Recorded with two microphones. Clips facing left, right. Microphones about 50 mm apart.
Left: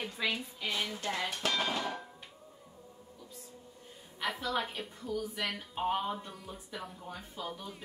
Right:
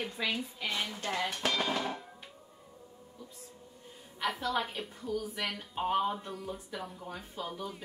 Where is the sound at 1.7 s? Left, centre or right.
Centre.